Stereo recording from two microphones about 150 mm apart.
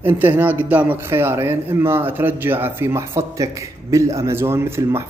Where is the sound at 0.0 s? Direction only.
15° right (ahead or behind).